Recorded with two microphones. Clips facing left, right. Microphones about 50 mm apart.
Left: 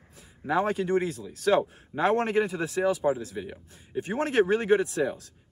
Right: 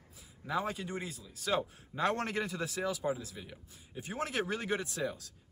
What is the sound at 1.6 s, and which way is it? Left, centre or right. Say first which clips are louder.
A man's voice: left 7 dB; left.